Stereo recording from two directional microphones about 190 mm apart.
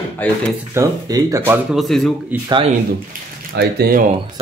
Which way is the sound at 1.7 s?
Centre (ahead or behind).